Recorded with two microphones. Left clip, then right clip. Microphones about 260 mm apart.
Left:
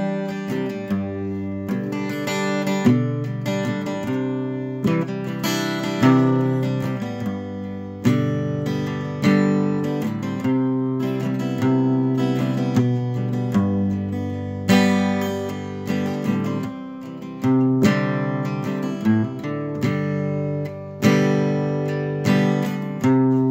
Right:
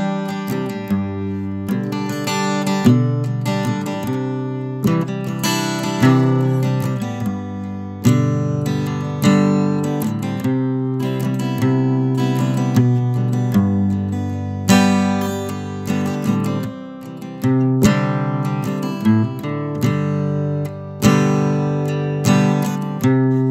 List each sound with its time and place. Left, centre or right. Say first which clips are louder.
2.2 s music: right 3 dB; right
8.0 s music: right 3 dB; right